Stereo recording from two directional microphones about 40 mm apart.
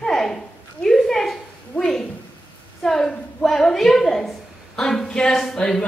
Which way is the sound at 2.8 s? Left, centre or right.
Centre.